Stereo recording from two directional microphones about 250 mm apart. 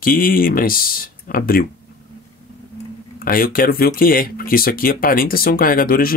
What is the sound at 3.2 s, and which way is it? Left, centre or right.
Speech, left.